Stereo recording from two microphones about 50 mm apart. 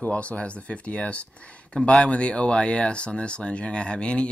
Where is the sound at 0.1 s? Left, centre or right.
Left.